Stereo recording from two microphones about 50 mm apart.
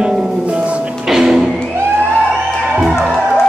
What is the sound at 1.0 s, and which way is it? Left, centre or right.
Music, centre.